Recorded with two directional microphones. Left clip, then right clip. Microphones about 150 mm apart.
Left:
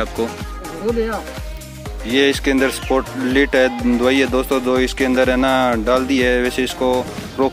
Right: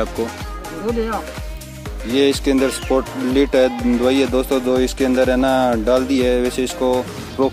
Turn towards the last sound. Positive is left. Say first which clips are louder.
# even
turn(degrees=-5)  # may be behind; listen again after turning